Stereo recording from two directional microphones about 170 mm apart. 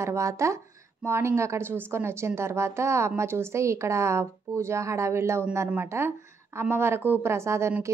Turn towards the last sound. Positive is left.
turn(degrees=-15)  # may be behind; listen again after turning